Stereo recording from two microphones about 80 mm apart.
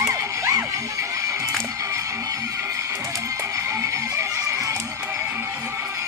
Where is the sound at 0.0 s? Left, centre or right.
Right.